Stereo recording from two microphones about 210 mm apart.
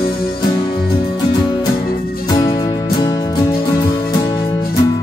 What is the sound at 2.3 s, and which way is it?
Music, 25° left (ahead or behind).